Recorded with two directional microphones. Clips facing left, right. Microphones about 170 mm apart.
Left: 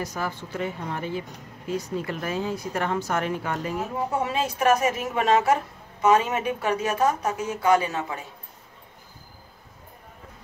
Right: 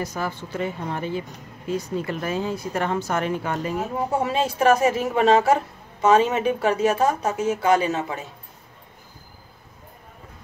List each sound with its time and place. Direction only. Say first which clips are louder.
0.0 s a woman's voice: right 2 dB; 25° right (ahead or behind)